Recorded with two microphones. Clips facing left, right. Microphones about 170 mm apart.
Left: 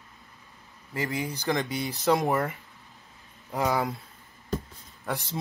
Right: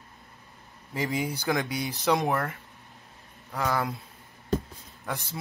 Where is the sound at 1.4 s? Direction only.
5° right (ahead or behind); by 3.8 s 15° left (ahead or behind).